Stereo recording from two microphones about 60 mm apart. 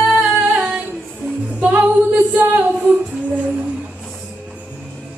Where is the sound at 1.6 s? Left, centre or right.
Right.